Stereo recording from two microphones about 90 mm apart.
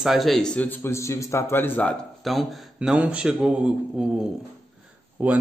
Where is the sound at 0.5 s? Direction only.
20° left (ahead or behind).